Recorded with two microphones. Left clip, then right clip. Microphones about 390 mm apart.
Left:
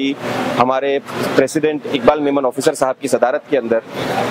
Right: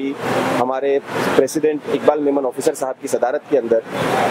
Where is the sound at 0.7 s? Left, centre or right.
Left.